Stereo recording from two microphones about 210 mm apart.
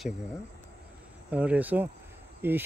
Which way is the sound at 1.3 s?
5° right (ahead or behind).